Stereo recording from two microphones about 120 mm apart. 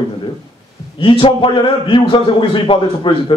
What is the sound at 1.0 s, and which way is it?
A man's voice, 45° left (ahead or behind).